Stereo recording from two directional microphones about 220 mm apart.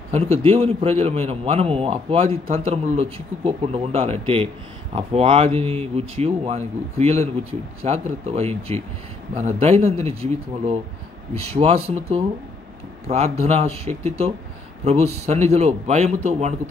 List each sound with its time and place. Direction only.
0.1 s speech: 25° right (ahead or behind)